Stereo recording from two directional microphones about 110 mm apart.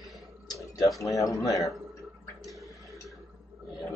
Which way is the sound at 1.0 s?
30° left (ahead or behind).